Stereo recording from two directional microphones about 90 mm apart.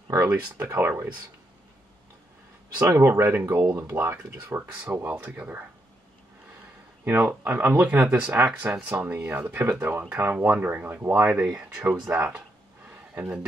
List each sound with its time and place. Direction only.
0.3 s speech: 25° right (ahead or behind)
3.1 s speech: 25° right (ahead or behind)
7.1 s speech: 20° right (ahead or behind)